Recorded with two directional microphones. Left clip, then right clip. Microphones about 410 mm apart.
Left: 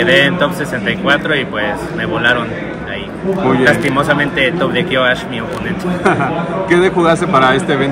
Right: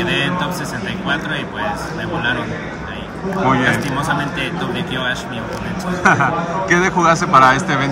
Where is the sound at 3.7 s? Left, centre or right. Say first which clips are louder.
Left 6 dB; centre.